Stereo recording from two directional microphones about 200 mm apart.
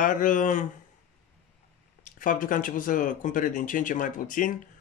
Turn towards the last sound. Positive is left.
turn(degrees=40)  # may be behind; listen again after turning